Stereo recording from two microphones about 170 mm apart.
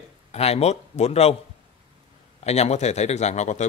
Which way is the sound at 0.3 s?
40° left (ahead or behind).